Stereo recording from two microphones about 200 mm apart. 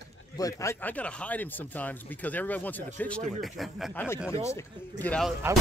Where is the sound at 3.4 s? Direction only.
Centre (ahead or behind).